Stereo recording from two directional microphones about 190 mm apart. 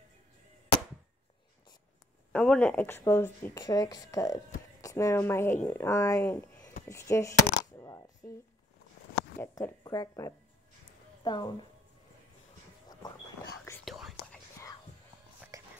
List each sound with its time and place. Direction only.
2.3 s speech: 5° left (ahead or behind)
6.9 s coin: 15° left (ahead or behind)
9.4 s a woman's voice: 20° left (ahead or behind)
13.8 s whispering: centre (ahead or behind)
15.5 s whispering: 15° right (ahead or behind)